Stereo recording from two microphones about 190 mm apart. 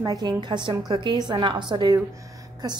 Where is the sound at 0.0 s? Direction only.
20° right (ahead or behind).